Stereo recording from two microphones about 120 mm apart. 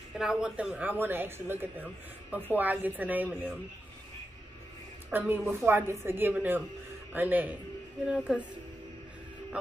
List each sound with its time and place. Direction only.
0.2 s speech: 5° right (ahead or behind)
5.1 s speech: 15° right (ahead or behind)